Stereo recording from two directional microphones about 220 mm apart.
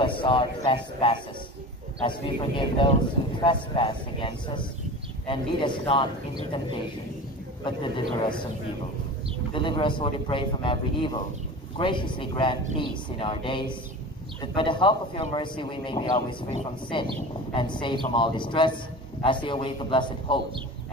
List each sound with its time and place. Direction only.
0.0 s speech: 20° left (ahead or behind)
7.6 s speech: 20° left (ahead or behind)
9.5 s speech: 20° left (ahead or behind)